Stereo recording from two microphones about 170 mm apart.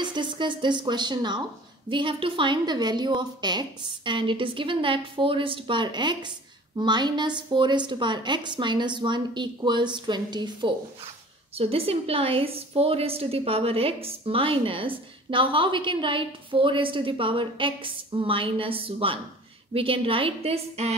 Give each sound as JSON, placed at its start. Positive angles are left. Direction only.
{"t": 0.0, "sound": "a woman's voice", "side_deg": -25}